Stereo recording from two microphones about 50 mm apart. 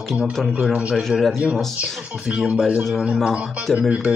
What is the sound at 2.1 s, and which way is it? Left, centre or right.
Speech, centre.